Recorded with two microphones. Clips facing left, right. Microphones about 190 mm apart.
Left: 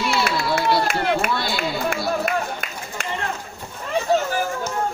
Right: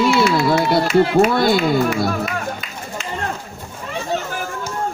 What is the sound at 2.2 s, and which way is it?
Run, 55° left (ahead or behind).